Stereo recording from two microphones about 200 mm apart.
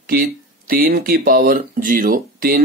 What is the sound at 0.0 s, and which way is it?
Speech, 50° right (ahead or behind).